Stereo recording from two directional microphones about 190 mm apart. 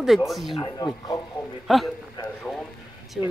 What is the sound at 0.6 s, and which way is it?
Speech, 20° left (ahead or behind).